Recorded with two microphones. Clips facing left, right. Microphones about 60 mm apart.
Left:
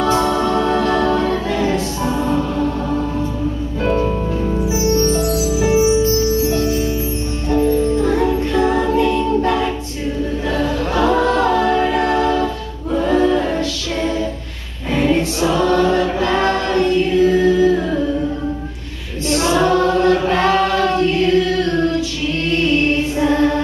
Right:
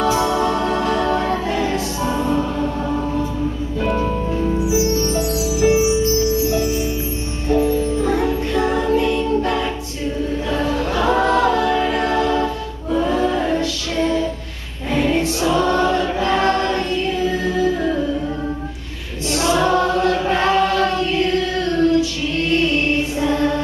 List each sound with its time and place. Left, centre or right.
0.6 s music: left
1.1 s music: right
3.8 s music: centre
6.5 s music: centre
8.2 s music: left
11.1 s a capella: right
11.5 s music: left
14.9 s choir: left
19.3 s choir: left
23.2 s music: left